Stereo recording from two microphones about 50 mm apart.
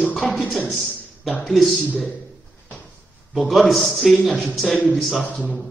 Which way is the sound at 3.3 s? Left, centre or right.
Centre.